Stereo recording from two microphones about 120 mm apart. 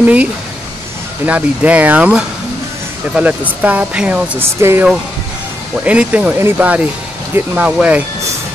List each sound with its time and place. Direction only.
0.0 s speech: 10° right (ahead or behind)
4.4 s speech: 20° right (ahead or behind)
5.9 s speech: 10° right (ahead or behind)